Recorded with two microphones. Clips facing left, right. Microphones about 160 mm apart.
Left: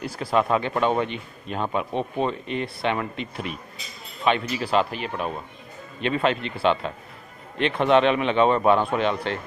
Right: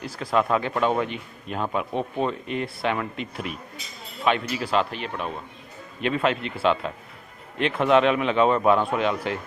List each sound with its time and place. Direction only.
0.2 s speech: 5° left (ahead or behind)